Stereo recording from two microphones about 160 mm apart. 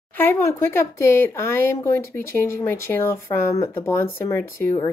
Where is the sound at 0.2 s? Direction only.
15° left (ahead or behind).